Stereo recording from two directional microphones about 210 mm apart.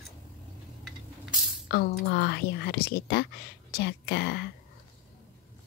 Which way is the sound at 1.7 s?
50° left (ahead or behind).